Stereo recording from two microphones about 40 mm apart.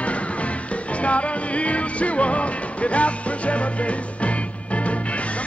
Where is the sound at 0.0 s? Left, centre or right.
Left.